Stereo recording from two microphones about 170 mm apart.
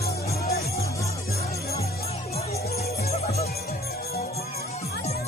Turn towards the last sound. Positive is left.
turn(degrees=40)  # may be behind; listen again after turning